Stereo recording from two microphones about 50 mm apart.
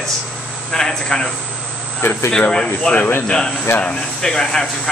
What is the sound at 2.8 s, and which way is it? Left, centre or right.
A man's voice, centre.